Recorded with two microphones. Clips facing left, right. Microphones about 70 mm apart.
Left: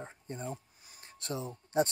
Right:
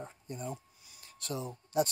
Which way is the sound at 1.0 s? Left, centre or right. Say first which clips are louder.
Even; left.